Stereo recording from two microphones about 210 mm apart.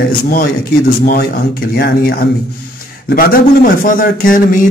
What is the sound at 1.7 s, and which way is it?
Speech, 45° left (ahead or behind).